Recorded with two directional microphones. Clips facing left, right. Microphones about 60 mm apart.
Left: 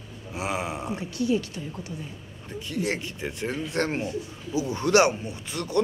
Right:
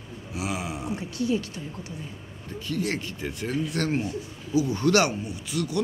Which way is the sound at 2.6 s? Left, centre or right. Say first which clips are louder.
Even; left.